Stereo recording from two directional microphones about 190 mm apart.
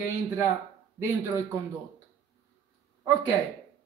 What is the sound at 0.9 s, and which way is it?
Speech, 15° right (ahead or behind).